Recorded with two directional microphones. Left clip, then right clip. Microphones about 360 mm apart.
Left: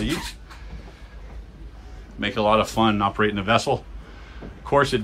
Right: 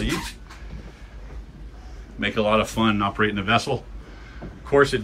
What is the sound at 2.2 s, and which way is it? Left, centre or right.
Speech, centre.